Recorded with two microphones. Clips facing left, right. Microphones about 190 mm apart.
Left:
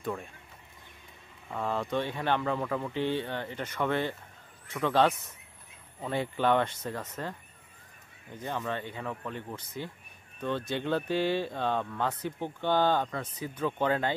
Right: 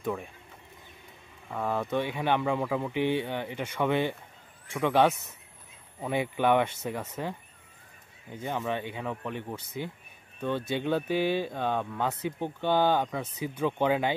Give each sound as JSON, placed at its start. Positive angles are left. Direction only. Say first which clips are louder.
{"t": 0.0, "sound": "speech", "louder": "right 3 dB", "side_deg": 0}
{"t": 1.5, "sound": "speech", "louder": "right 2 dB", "side_deg": -5}